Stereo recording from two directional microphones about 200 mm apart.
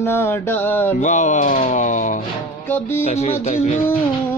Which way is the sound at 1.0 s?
40° left (ahead or behind).